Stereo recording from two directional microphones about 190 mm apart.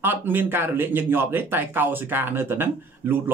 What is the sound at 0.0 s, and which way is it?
Speech, 10° right (ahead or behind).